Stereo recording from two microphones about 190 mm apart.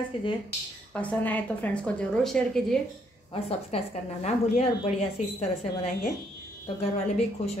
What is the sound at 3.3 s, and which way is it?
A woman's voice, 30° left (ahead or behind).